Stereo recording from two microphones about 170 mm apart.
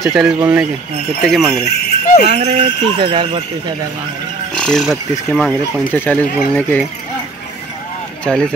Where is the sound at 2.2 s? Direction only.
35° right (ahead or behind).